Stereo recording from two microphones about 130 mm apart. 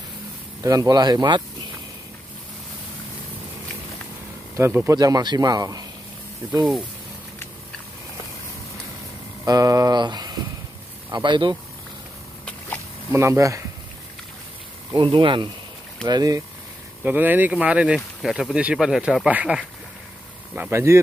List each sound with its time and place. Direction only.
0.6 s speech: 25° right (ahead or behind)
4.6 s speech: 20° right (ahead or behind)
4.9 s speech: 30° right (ahead or behind)
9.4 s a sound: 25° right (ahead or behind)
11.1 s speech: 35° right (ahead or behind)
13.1 s speech: 20° right (ahead or behind)
14.9 s speech: 40° right (ahead or behind)
16.1 s speech: 30° right (ahead or behind)
17.0 s speech: 15° right (ahead or behind)